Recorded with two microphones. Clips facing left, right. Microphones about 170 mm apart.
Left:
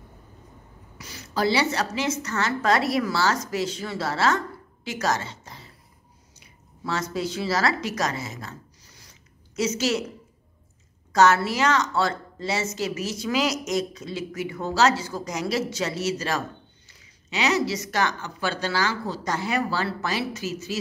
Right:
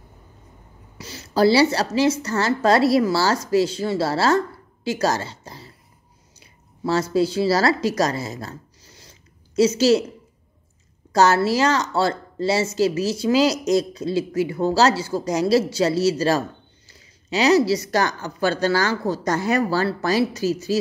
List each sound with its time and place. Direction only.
0.9 s a woman's voice: 30° right (ahead or behind)
11.1 s a woman's voice: 35° right (ahead or behind)